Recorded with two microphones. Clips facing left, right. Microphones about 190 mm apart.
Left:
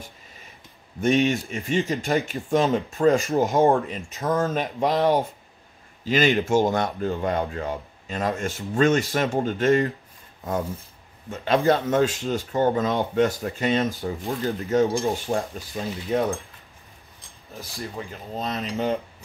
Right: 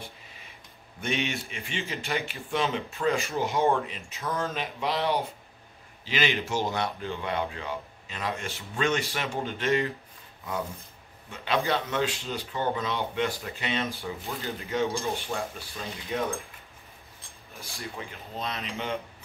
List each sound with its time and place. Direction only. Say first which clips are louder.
1.0 s speech: left 10 dB; 45° left (ahead or behind)
11.2 s speech: left 8 dB; 45° left (ahead or behind)
17.6 s speech: left 5 dB; 40° left (ahead or behind)